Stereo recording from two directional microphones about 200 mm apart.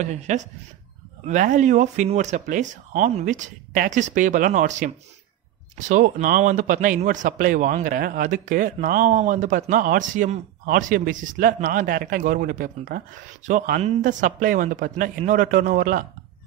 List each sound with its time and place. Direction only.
0.0 s speech: 35° right (ahead or behind)